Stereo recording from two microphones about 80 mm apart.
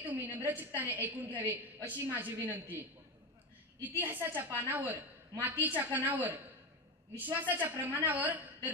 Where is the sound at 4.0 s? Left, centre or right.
Right.